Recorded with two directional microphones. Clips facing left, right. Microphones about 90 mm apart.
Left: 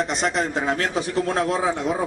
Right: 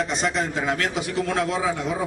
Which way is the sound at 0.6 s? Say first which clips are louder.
Left 1 dB; 35° left (ahead or behind).